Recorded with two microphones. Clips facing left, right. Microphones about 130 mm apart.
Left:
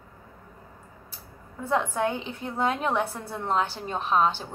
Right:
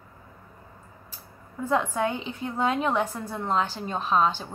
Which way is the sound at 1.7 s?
15° right (ahead or behind).